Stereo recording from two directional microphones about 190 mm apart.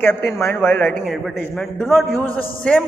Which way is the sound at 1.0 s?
Centre (ahead or behind).